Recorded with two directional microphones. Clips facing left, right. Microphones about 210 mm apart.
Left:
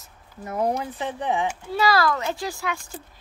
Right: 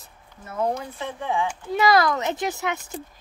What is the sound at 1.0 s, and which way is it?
Speech, 20° left (ahead or behind).